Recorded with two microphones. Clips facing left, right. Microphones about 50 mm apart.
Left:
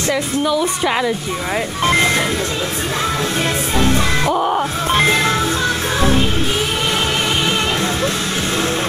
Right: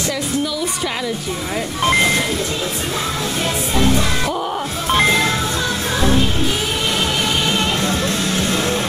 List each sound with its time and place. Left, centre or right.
3.7 s music: left
4.3 s music: left
4.9 s music: centre
5.9 s music: left